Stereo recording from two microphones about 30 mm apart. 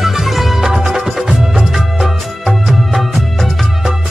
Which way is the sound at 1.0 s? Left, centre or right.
Centre.